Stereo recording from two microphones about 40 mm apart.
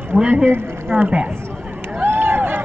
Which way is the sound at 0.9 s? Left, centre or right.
Right.